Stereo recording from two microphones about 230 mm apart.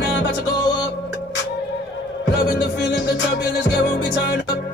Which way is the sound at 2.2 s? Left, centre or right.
Left.